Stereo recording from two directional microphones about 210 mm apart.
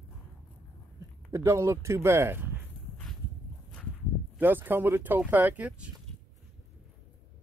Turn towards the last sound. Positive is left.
turn(degrees=-10)  # may be behind; listen again after turning